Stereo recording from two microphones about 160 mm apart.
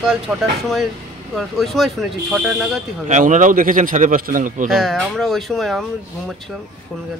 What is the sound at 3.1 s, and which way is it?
A man's voice, 55° right (ahead or behind).